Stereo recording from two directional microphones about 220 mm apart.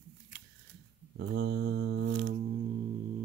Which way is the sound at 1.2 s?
55° right (ahead or behind).